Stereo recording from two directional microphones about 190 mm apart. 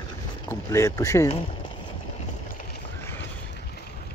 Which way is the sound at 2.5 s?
45° left (ahead or behind).